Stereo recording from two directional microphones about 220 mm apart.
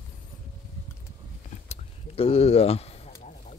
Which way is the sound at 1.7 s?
25° left (ahead or behind).